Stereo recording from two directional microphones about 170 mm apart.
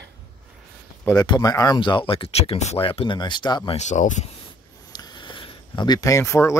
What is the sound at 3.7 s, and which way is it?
Speech, 45° left (ahead or behind).